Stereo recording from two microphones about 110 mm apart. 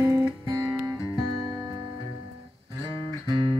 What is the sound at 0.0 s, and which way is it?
Music, 35° right (ahead or behind).